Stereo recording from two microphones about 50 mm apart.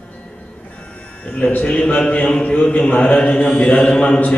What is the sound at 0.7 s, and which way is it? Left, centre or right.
Music, left.